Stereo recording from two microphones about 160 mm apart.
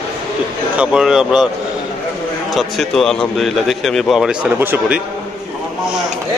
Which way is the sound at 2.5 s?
Centre (ahead or behind).